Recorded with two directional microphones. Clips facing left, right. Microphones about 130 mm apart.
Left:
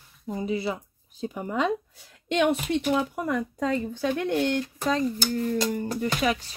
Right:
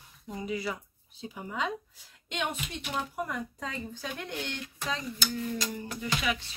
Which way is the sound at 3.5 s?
60° left (ahead or behind).